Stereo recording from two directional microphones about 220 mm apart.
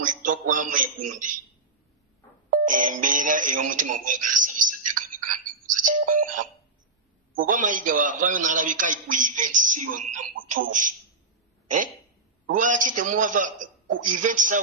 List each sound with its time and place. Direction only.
0.0 s a man's voice: 35° right (ahead or behind)
2.5 s speech: 35° right (ahead or behind)
5.7 s music: 35° right (ahead or behind)
7.3 s a man's voice: 35° right (ahead or behind)
12.5 s a man's voice: 35° right (ahead or behind)